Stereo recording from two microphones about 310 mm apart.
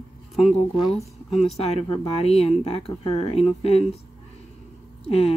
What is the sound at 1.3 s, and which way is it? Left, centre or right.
Speech, centre.